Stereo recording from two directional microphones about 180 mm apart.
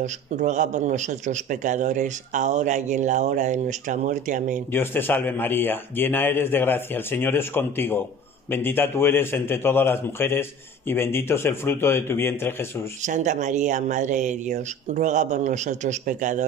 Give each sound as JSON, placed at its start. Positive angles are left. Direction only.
{"t": 0.0, "sound": "speech", "side_deg": -40}
{"t": 4.7, "sound": "a man's voice", "side_deg": 10}
{"t": 13.0, "sound": "speech", "side_deg": -40}